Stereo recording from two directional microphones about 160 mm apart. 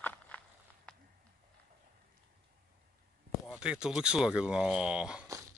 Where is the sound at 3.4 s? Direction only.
5° right (ahead or behind).